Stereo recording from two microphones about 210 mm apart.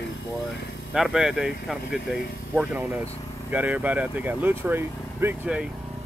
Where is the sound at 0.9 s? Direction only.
Centre (ahead or behind).